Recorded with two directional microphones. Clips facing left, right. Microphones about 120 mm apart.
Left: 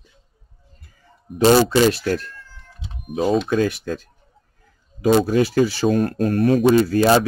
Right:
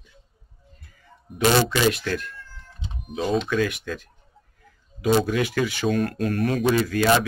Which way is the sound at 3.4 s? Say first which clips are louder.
Left 4 dB; 35° left (ahead or behind).